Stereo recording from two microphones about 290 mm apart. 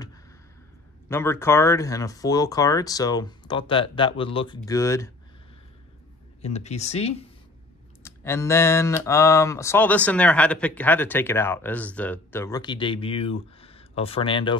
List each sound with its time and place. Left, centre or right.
1.0 s speech: centre
6.4 s speech: left
8.0 s speech: centre